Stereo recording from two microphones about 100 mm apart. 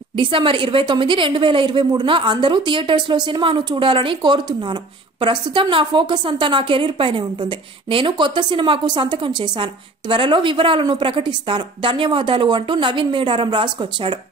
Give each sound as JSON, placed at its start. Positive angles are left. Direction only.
{"t": 0.1, "sound": "a woman's voice", "side_deg": -55}